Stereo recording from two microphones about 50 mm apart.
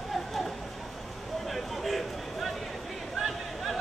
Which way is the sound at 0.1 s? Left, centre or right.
Centre.